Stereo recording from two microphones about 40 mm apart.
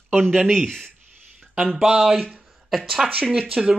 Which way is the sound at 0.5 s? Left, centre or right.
Centre.